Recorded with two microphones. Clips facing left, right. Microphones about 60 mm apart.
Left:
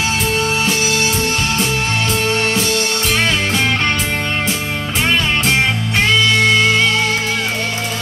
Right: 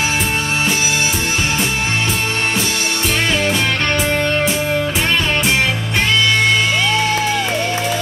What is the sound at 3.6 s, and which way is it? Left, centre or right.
Music, centre.